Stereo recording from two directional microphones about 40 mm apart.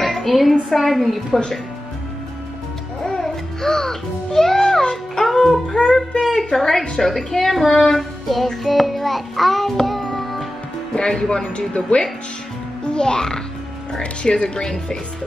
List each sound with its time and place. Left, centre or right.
0.0 s a sound: centre
0.7 s a woman's voice: centre
3.1 s music: centre
5.7 s a woman's voice: centre
9.8 s music: centre
11.0 s speech: centre
11.4 s a child's voice: left